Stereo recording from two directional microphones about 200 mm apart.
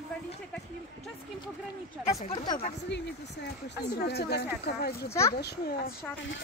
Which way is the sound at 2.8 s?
60° left (ahead or behind).